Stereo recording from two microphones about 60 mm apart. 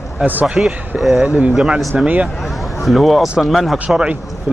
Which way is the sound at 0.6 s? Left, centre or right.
Centre.